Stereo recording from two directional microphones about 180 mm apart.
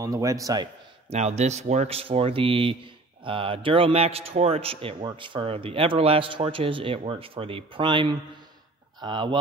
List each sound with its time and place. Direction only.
0.0 s a man's voice: 15° right (ahead or behind)
1.1 s a man's voice: 40° right (ahead or behind)